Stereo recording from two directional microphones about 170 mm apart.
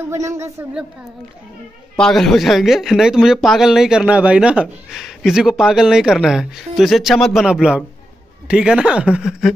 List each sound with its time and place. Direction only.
0.0 s a woman's voice: 15° right (ahead or behind)
2.0 s a man's voice: centre (ahead or behind)